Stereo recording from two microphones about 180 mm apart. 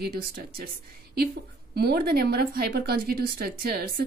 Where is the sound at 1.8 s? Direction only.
60° right (ahead or behind).